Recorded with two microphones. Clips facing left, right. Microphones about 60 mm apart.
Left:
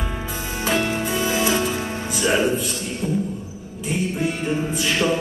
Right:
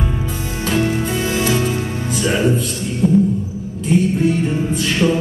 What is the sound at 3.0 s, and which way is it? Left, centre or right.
Music, right.